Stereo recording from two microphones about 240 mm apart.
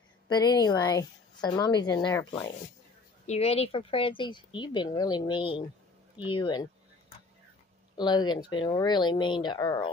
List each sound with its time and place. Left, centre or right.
0.3 s a woman's voice: centre
8.0 s a woman's voice: centre